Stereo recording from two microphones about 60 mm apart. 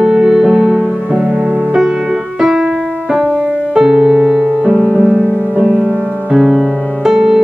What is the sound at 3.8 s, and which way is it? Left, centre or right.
Music, centre.